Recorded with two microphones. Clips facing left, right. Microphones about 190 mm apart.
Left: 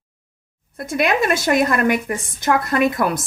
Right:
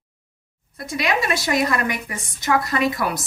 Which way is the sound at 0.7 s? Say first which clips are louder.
Left 4 dB; 55° left (ahead or behind).